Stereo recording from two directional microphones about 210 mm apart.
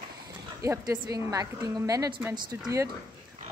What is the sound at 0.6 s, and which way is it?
Speech, 15° right (ahead or behind).